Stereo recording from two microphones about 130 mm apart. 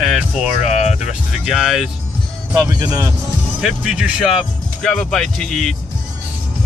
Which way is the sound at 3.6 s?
5° right (ahead or behind).